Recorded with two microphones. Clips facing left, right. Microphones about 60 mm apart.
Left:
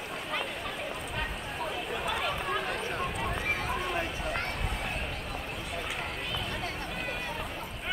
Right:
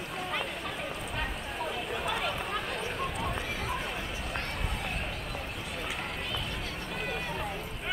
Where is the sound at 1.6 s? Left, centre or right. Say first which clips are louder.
Even; centre.